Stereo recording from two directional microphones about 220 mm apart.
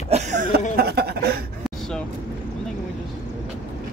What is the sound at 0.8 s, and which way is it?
Speech, 45° right (ahead or behind).